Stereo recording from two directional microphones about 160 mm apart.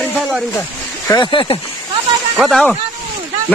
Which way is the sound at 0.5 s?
20° left (ahead or behind).